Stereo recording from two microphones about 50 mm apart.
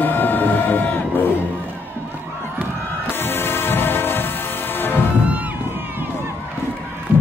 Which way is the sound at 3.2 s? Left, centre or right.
Left.